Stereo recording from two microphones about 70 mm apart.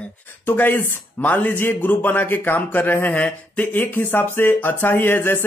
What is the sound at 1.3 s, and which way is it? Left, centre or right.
A man's voice, left.